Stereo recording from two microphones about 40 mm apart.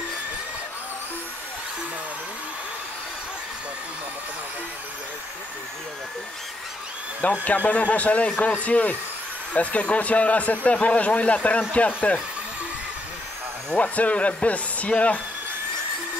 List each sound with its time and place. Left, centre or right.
7.4 s speech: left
13.7 s speech: left